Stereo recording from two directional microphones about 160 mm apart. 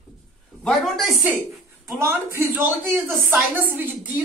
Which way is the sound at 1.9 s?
15° right (ahead or behind).